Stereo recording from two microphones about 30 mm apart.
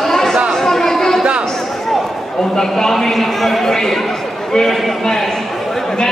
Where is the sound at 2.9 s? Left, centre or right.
Centre.